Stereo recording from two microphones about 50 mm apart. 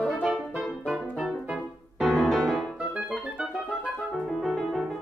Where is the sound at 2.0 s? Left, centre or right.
Centre.